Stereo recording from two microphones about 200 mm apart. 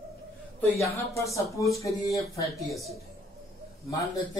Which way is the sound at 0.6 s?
15° left (ahead or behind).